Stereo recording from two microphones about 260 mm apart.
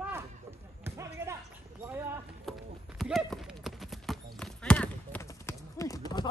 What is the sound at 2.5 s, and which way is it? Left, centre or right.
Clip-clop, centre.